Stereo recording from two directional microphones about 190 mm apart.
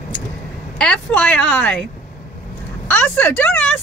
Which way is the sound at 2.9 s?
10° left (ahead or behind).